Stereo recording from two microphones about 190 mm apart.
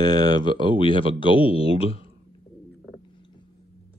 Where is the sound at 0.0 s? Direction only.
20° left (ahead or behind).